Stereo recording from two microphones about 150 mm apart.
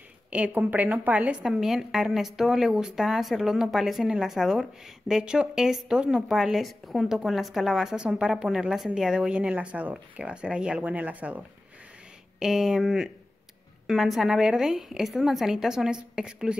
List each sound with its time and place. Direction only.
0.3 s a woman's voice: 10° right (ahead or behind)